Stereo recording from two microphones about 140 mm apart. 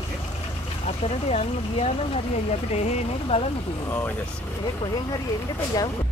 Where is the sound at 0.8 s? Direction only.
50° left (ahead or behind).